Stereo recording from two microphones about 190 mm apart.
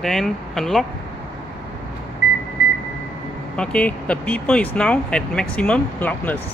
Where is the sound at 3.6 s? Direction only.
5° left (ahead or behind).